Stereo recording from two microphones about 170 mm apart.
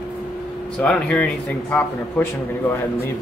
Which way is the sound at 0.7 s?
5° left (ahead or behind).